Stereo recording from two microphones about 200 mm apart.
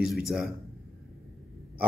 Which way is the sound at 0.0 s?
Centre (ahead or behind).